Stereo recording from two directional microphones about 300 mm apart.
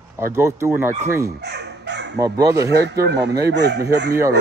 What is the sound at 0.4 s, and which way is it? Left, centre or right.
Speech, centre.